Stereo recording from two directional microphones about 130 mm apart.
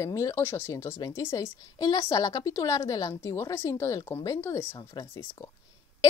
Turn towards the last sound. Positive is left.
turn(degrees=20)  # may be behind; listen again after turning